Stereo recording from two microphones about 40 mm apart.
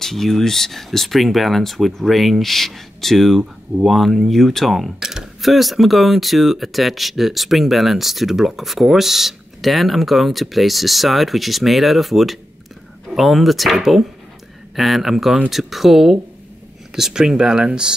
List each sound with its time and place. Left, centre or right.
0.0 s speech: centre; by 17.9 s right